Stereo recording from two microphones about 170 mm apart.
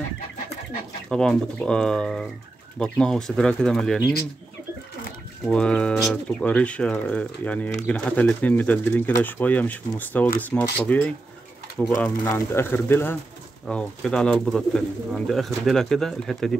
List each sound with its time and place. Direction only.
1.0 s speech: 5° left (ahead or behind)
5.5 s speech: 5° left (ahead or behind)